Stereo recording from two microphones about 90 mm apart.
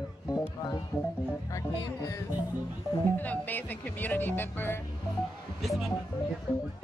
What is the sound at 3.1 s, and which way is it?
Speech, 20° left (ahead or behind).